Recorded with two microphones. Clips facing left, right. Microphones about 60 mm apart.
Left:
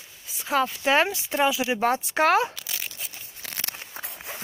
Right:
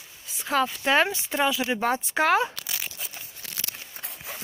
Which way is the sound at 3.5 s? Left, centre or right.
Left.